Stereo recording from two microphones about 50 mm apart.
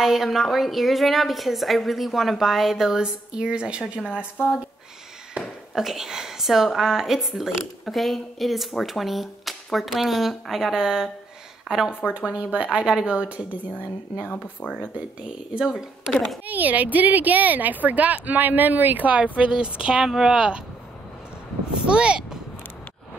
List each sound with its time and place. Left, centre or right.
0.0 s speech: centre; by 4.5 s right
5.8 s speech: centre
12.1 s speech: right
14.6 s speech: left
15.2 s speech: centre
16.4 s speech: right; by 20.6 s centre
21.7 s speech: centre